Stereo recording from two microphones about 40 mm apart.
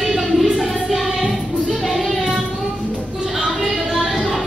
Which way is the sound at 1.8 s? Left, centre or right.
Centre.